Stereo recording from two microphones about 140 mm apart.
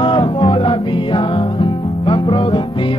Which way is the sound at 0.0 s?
35° left (ahead or behind).